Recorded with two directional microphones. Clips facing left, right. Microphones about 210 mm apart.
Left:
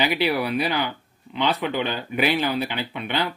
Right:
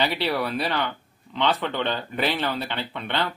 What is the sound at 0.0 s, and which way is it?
Speech, 10° left (ahead or behind).